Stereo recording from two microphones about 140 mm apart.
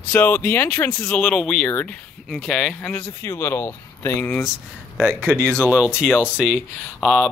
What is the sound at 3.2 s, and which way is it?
Speech, 15° left (ahead or behind).